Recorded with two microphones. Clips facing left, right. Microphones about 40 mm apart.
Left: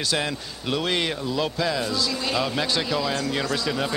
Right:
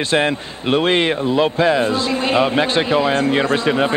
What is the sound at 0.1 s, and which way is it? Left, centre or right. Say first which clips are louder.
Speech: right 9 dB; right.